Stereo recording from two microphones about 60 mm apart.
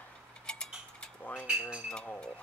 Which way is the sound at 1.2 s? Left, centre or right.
Left.